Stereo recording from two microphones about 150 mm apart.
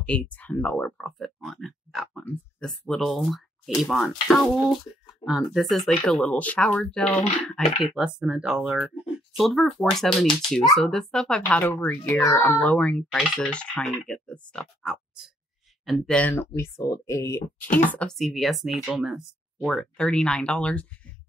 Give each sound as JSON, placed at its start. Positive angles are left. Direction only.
{"t": 0.0, "sound": "speech", "side_deg": 10}
{"t": 17.8, "sound": "speech", "side_deg": 5}